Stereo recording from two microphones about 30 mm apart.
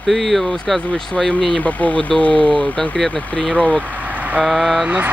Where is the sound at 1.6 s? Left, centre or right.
Left.